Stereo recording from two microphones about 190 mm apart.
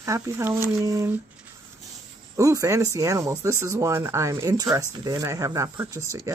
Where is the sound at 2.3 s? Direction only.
15° right (ahead or behind).